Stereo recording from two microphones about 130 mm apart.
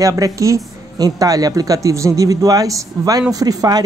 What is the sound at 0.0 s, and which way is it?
Speech, 25° right (ahead or behind).